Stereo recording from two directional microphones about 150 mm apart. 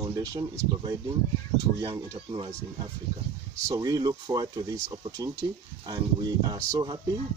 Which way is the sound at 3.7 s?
25° right (ahead or behind).